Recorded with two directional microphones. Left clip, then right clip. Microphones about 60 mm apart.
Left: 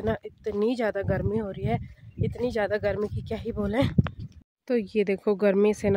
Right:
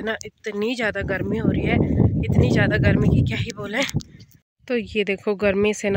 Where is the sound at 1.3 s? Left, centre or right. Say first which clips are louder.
Right 7 dB; left.